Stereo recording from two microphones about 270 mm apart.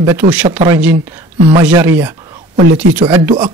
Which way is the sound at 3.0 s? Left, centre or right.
Centre.